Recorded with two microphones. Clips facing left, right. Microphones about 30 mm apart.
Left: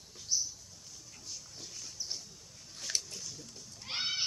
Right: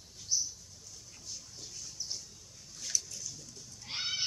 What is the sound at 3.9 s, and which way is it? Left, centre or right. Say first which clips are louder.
Goat: left 1 dB; centre.